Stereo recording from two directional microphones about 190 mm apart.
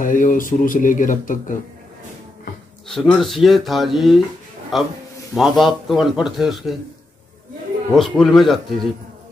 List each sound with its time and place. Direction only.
0.0 s speech: 45° left (ahead or behind)
2.9 s a man's voice: centre (ahead or behind)
7.9 s a man's voice: centre (ahead or behind)